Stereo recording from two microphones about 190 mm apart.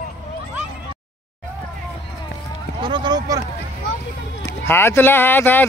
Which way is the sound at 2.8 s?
25° right (ahead or behind).